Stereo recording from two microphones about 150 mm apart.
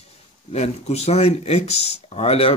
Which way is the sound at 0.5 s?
45° left (ahead or behind).